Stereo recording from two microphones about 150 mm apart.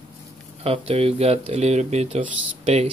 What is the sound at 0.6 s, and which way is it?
Speech, 40° right (ahead or behind).